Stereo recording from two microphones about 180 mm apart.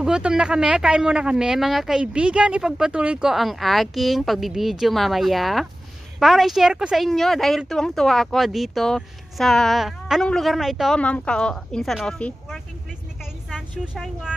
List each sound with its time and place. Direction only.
0.0 s speech: 5° right (ahead or behind)
13.2 s vehicle: centre (ahead or behind)